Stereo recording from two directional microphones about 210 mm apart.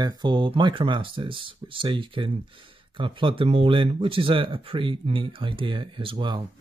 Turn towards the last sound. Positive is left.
turn(degrees=-25)  # may be behind; listen again after turning